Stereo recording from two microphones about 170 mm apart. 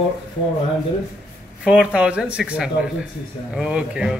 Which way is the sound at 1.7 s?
5° right (ahead or behind).